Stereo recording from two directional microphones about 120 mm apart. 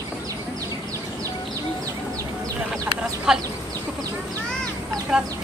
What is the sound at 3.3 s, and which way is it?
Speech, 5° right (ahead or behind).